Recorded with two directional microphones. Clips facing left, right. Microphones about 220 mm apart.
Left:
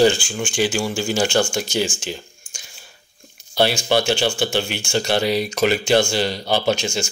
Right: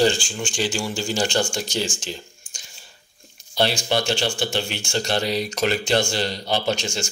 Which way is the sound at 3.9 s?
5° left (ahead or behind).